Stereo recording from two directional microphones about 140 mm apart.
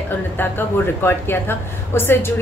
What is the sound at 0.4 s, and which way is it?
A woman's voice, 15° left (ahead or behind).